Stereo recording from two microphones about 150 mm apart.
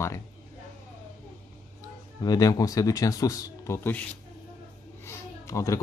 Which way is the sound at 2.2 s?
25° left (ahead or behind).